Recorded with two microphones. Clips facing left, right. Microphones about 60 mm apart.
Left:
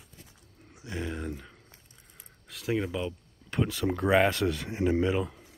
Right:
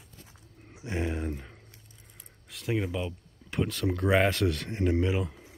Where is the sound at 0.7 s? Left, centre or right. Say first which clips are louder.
Right 3 dB; right.